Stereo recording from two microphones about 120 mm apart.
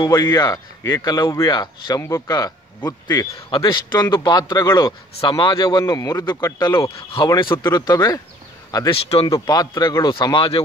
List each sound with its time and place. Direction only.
0.0 s speech: 35° left (ahead or behind)
2.0 s speech: 20° left (ahead or behind)
3.3 s speech: 45° left (ahead or behind)
8.9 s speech: 50° left (ahead or behind)
9.3 s speech: 35° left (ahead or behind)